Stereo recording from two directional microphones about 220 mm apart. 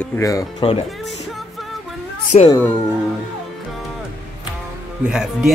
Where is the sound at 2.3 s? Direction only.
35° left (ahead or behind).